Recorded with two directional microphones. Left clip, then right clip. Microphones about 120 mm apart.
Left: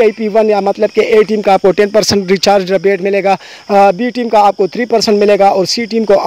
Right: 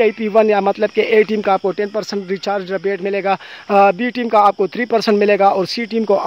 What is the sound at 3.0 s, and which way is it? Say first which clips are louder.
Speech: left 6 dB; 55° left (ahead or behind).